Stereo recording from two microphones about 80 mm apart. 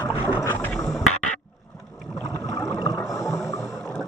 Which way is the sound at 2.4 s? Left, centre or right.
Left.